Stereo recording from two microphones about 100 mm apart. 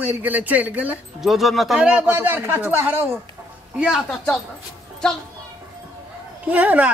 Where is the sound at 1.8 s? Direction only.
15° right (ahead or behind).